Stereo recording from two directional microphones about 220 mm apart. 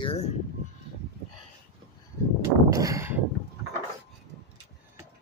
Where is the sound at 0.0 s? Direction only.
25° left (ahead or behind).